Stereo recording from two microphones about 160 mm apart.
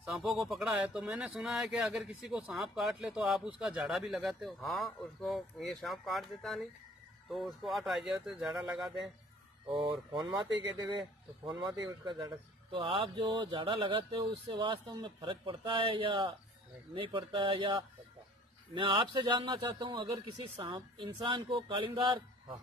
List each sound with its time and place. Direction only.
0.0 s speech: centre (ahead or behind)
9.7 s a man's voice: 30° right (ahead or behind)
11.7 s a man's voice: 20° right (ahead or behind)